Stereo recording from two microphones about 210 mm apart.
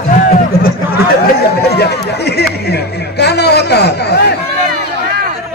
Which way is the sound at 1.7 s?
50° left (ahead or behind).